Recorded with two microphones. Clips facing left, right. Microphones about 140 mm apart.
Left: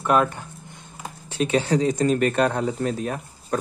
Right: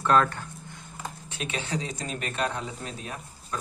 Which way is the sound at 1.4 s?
40° left (ahead or behind).